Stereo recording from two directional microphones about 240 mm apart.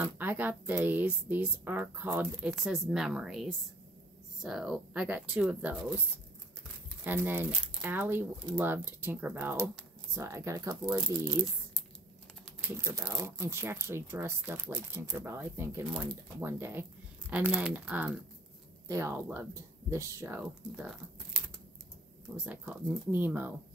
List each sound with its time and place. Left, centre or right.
0.0 s speech: centre
7.1 s speech: centre
12.6 s speech: centre
22.4 s speech: centre